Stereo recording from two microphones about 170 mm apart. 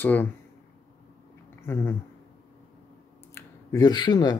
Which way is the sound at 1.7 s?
15° left (ahead or behind).